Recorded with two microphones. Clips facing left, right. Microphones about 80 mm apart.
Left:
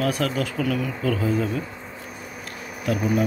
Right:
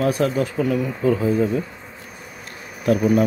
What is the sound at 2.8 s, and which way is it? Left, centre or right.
Speech, right.